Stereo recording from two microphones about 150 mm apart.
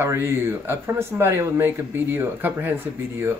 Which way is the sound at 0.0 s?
15° right (ahead or behind).